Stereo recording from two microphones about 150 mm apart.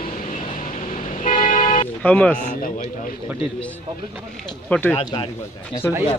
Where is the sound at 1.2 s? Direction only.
60° left (ahead or behind).